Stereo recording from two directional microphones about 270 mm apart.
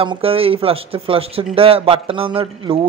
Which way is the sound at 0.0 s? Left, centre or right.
Centre.